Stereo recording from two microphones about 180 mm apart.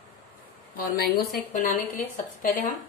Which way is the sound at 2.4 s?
50° left (ahead or behind).